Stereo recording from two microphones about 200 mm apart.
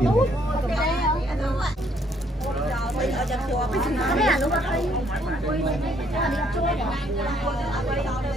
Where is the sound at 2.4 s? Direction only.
Centre (ahead or behind).